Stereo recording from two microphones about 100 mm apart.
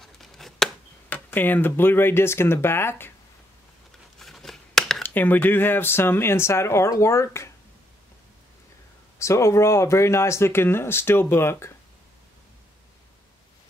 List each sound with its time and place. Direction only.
0.0 s chopping: 5° left (ahead or behind)
1.0 s speech: 20° left (ahead or behind)
4.2 s a sound: centre (ahead or behind)
5.0 s speech: 20° left (ahead or behind)
9.2 s speech: 30° left (ahead or behind)